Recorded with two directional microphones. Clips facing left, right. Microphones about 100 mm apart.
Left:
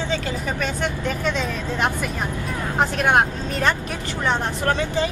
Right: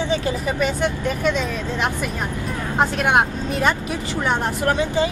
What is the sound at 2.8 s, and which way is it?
Speech, 5° right (ahead or behind).